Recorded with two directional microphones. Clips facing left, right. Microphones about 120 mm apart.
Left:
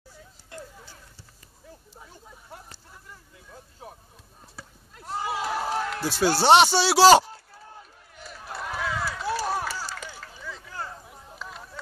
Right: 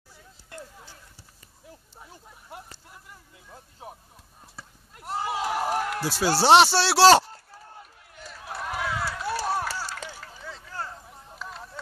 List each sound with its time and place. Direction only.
5.3 s a man's voice: 15° right (ahead or behind)
8.2 s run: centre (ahead or behind)
11.4 s a sound: centre (ahead or behind)